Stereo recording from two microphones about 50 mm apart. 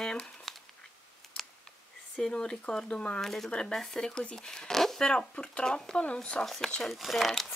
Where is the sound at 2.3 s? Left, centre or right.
Centre.